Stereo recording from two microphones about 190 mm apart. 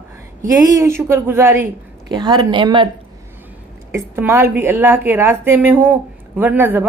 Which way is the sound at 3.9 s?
10° right (ahead or behind).